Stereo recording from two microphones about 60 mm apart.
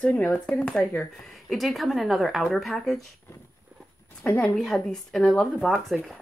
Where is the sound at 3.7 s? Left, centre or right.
Right.